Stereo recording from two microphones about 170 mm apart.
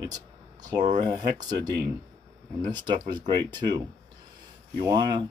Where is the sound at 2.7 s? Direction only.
25° right (ahead or behind).